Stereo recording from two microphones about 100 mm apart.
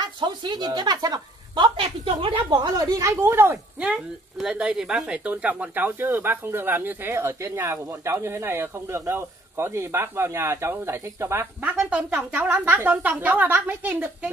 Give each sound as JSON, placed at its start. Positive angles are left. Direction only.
{"t": 0.0, "sound": "a woman's voice", "side_deg": -45}
{"t": 2.5, "sound": "speech", "side_deg": -40}
{"t": 3.8, "sound": "speech", "side_deg": -10}
{"t": 11.8, "sound": "a woman's voice", "side_deg": -15}